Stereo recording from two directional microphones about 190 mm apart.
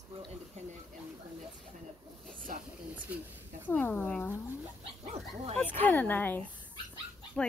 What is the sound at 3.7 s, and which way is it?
Speech, 10° left (ahead or behind).